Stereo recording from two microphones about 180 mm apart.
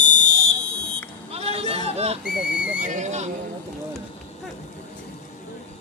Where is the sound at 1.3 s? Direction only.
35° right (ahead or behind).